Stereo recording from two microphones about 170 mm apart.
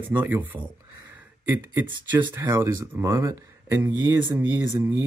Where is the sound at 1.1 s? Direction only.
10° right (ahead or behind).